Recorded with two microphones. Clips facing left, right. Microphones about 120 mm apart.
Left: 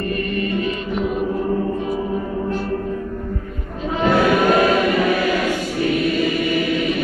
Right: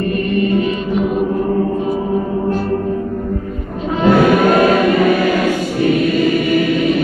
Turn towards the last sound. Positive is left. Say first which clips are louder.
# right 5 dB
turn(degrees=-25)  # may be behind; listen again after turning